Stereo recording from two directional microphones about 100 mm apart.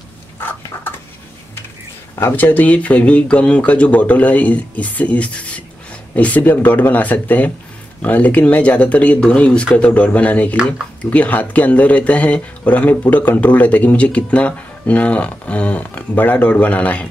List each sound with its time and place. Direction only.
0.4 s bird: 20° left (ahead or behind)
2.1 s speech: 20° left (ahead or behind)